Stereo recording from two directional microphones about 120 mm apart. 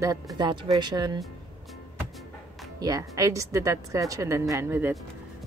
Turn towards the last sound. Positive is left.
turn(degrees=-20)  # may be behind; listen again after turning